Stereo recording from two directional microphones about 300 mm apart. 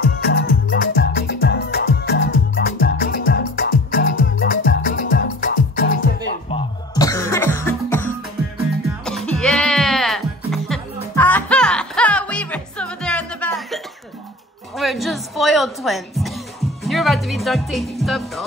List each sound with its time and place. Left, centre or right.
0.2 s music: left
6.5 s music: centre
14.8 s music: centre